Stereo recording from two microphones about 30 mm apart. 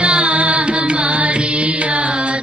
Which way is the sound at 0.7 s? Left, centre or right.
Right.